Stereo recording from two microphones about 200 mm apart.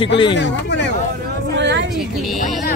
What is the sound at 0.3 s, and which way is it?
Speech, 65° left (ahead or behind).